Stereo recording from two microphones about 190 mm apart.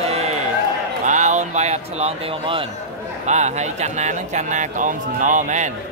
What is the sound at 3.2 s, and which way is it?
Speech, 35° right (ahead or behind).